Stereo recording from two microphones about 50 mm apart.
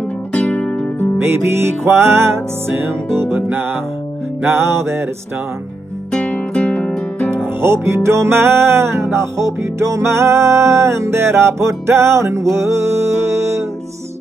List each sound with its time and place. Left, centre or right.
0.3 s music: left
1.2 s music: right
4.5 s music: right
6.1 s music: left
7.6 s music: right